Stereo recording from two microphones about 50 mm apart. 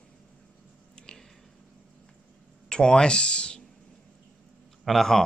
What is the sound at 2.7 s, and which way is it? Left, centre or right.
Speech, centre.